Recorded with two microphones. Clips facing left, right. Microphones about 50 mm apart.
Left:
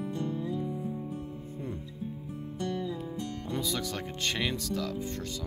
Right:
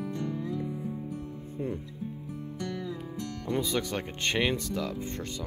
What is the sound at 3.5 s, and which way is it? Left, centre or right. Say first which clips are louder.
Speech: right 4 dB; right.